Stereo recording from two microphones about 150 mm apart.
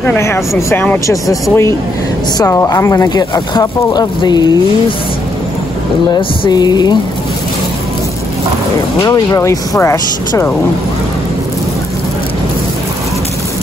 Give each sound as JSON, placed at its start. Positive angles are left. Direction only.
{"t": 0.0, "sound": "speech", "side_deg": 15}
{"t": 6.1, "sound": "speech", "side_deg": 30}
{"t": 9.0, "sound": "speech", "side_deg": 20}